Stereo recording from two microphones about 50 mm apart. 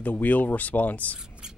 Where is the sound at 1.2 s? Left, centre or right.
Centre.